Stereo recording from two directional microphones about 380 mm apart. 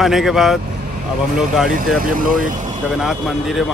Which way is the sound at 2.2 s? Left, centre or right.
Right.